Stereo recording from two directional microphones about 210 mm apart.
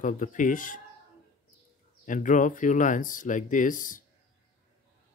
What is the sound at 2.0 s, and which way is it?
Speech, 35° left (ahead or behind).